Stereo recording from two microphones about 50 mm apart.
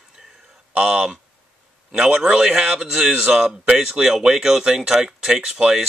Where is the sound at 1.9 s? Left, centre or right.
Centre.